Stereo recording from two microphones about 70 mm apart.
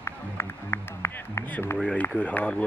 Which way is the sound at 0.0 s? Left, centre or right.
Left.